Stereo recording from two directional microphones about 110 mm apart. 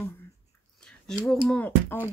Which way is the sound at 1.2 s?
5° left (ahead or behind).